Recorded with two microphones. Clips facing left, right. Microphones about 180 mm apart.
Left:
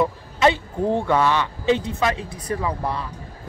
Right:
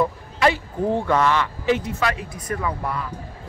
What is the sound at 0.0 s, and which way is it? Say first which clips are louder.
A man's voice: left 1 dB; 20° left (ahead or behind).